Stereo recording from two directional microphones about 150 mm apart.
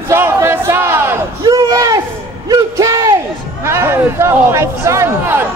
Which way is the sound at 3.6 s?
15° right (ahead or behind).